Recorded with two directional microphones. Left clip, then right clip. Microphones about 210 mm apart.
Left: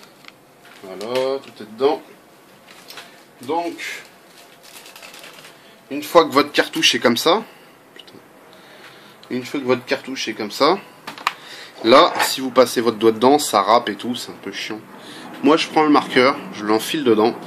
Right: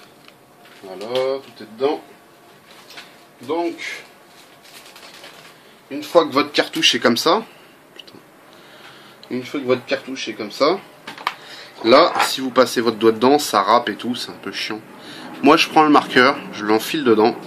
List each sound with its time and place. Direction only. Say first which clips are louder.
1.2 s speech: even; 25° left (ahead or behind)
5.9 s speech: left 2 dB; 25° left (ahead or behind)
6.5 s speech: even; 5° left (ahead or behind)
9.4 s speech: even; 20° left (ahead or behind)
11.4 s speech: right 1 dB; 5° left (ahead or behind)